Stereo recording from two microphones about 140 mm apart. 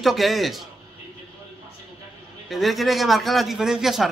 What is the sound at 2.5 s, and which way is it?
A man's voice, centre (ahead or behind).